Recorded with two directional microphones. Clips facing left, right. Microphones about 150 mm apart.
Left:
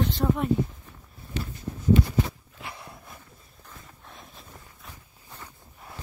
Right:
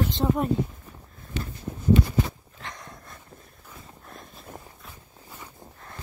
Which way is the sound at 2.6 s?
5° left (ahead or behind).